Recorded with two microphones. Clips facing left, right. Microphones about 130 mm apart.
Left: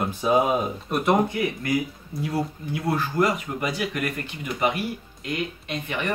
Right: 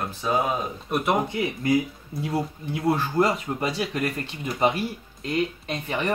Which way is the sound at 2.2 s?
25° right (ahead or behind).